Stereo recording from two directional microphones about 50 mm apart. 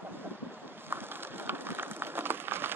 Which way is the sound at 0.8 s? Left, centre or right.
Right.